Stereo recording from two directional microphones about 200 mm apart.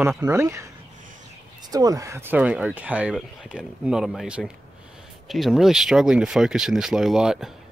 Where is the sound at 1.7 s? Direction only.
20° right (ahead or behind); by 7.4 s centre (ahead or behind).